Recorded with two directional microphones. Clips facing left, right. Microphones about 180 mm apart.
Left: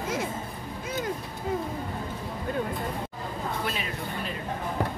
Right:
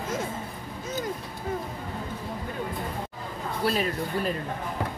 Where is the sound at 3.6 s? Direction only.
40° right (ahead or behind).